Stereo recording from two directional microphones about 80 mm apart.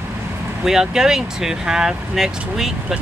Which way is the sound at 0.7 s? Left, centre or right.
Centre.